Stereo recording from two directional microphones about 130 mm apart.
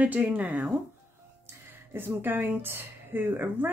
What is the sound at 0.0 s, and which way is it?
Speech, 10° right (ahead or behind).